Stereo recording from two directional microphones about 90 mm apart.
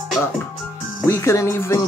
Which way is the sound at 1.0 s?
30° left (ahead or behind).